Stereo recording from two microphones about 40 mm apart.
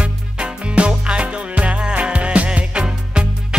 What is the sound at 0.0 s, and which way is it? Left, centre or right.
Music, right.